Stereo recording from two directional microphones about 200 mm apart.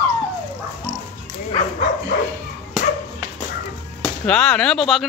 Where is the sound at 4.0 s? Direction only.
5° left (ahead or behind).